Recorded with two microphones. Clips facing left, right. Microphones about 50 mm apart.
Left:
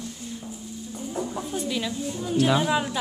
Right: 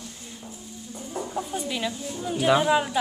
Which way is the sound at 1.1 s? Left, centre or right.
Centre.